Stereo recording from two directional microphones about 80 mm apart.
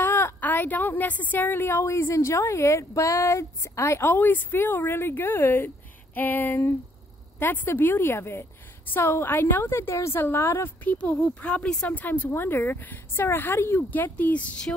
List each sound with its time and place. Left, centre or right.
0.0 s a woman's voice: left